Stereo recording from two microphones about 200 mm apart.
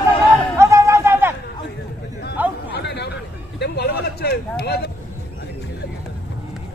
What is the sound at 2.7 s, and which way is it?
Speech, 55° left (ahead or behind).